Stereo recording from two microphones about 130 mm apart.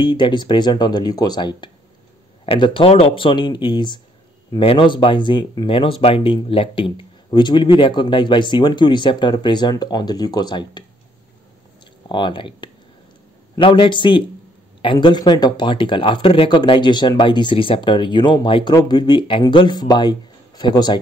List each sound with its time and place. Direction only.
0.0 s speech: 35° left (ahead or behind)
2.4 s speech: 45° left (ahead or behind)
12.1 s speech: 40° left (ahead or behind)